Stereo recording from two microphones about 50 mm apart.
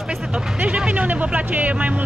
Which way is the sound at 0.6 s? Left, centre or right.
Right.